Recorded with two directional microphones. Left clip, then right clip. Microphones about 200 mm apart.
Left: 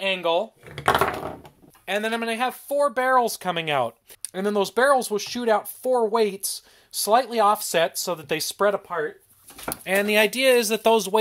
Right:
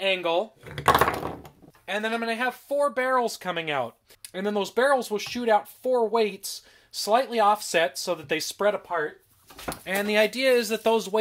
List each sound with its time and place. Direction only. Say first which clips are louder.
0.0 s speech: left 2 dB; 20° left (ahead or behind)
1.9 s speech: left 2 dB; 50° left (ahead or behind); by 8.9 s 35° left (ahead or behind)
9.7 s speech: left 5 dB; 45° left (ahead or behind)